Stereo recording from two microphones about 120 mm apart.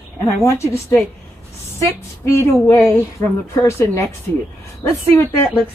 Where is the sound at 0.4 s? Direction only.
20° left (ahead or behind).